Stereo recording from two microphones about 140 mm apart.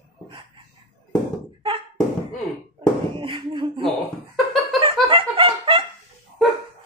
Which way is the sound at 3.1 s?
40° right (ahead or behind).